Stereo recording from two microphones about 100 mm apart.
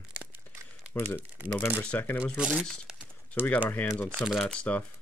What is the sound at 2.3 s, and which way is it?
Speech, 10° right (ahead or behind).